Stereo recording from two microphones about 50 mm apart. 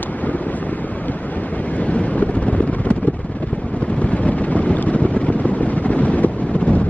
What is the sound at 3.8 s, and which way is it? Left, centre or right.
Vehicle, left.